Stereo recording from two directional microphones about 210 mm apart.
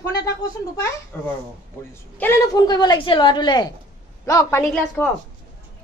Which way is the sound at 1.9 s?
10° left (ahead or behind).